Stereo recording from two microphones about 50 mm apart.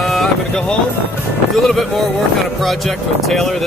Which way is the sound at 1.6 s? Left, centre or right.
Centre.